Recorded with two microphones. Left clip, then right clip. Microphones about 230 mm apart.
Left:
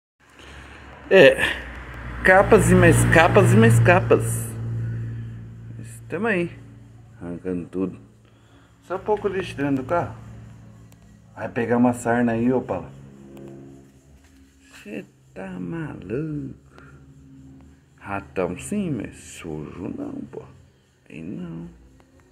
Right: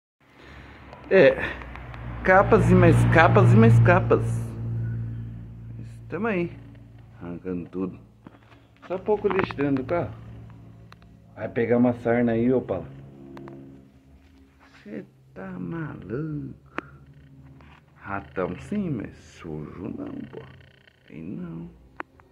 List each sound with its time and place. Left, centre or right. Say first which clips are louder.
1.1 s a woman's voice: left 4 dB; centre
5.8 s vehicle: left 3 dB; centre
7.2 s speech: left 4 dB; left
8.8 s speech: left 1 dB; centre
9.8 s a woman's voice: left 3 dB; centre
11.3 s a woman's voice: even; centre
14.9 s speech: left 3 dB; left
16.8 s a sound: right 13 dB; centre
18.0 s speech: left 3 dB; left